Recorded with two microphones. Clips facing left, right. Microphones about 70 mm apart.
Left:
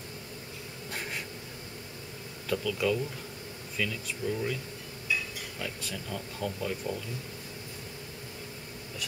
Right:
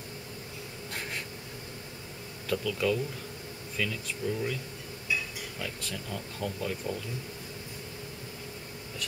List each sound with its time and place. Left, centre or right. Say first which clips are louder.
0.9 s bee: even; centre
2.4 s speech: even; centre
4.2 s speech: even; centre
5.6 s speech: even; centre